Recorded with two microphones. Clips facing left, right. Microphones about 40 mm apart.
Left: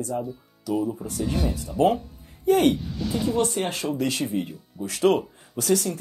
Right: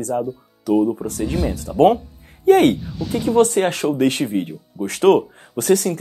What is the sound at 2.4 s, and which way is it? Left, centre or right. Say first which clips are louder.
Speech: right 6 dB; right.